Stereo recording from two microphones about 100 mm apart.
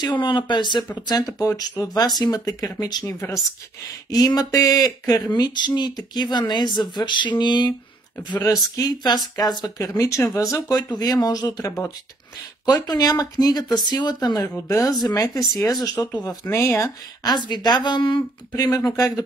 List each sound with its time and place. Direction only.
0.0 s speech: 50° left (ahead or behind)
16.4 s speech: 25° left (ahead or behind)
17.5 s speech: 45° left (ahead or behind)
18.5 s speech: 40° left (ahead or behind)